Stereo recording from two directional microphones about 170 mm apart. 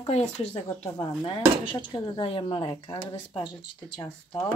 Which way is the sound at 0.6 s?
25° left (ahead or behind).